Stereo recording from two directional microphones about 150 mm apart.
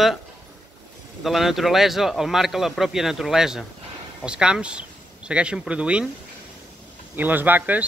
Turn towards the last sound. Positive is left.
turn(degrees=-10)  # may be behind; listen again after turning